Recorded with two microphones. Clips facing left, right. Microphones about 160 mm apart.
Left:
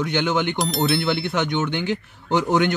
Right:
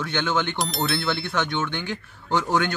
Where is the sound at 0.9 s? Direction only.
20° left (ahead or behind).